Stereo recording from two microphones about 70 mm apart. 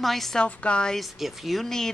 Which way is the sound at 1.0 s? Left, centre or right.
Centre.